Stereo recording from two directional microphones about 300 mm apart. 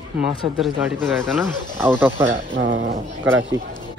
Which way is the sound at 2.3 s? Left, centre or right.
Right.